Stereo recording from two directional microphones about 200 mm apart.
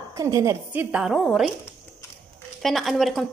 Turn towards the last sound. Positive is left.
turn(degrees=0)  # may be behind; listen again after turning